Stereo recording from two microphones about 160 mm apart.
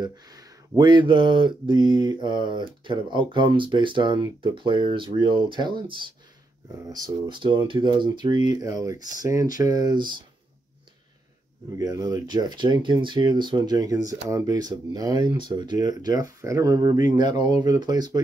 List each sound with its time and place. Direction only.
0.0 s speech: 25° right (ahead or behind)
11.8 s speech: 25° right (ahead or behind)